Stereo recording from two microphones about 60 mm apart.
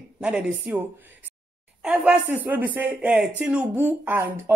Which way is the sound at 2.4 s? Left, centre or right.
Right.